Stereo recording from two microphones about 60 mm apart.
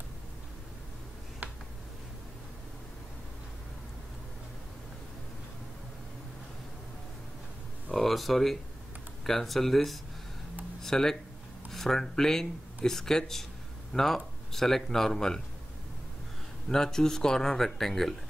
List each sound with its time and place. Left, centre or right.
1.4 s a sound: right
7.9 s speech: centre
10.8 s speech: centre
16.6 s speech: centre